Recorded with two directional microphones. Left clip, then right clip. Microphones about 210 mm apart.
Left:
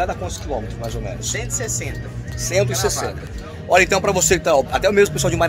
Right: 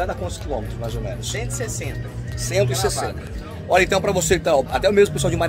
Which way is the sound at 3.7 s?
10° left (ahead or behind).